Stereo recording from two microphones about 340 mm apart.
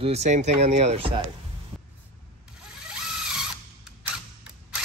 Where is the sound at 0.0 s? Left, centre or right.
Centre.